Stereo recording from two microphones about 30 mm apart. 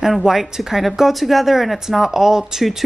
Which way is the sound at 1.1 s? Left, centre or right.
Centre.